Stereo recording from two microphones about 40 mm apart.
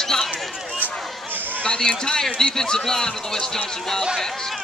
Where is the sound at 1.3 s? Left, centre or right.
Right.